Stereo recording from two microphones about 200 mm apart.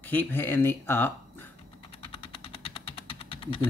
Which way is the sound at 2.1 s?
30° left (ahead or behind).